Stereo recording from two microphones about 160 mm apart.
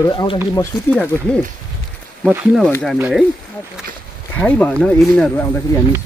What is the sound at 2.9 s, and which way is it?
Speech, 5° right (ahead or behind).